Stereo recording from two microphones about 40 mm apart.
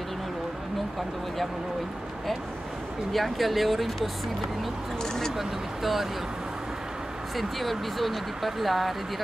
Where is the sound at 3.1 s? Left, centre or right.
Centre.